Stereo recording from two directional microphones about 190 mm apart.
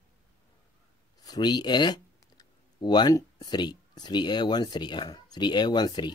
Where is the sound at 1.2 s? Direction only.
20° left (ahead or behind).